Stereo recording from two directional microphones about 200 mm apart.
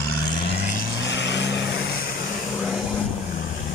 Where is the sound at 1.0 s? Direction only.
60° left (ahead or behind).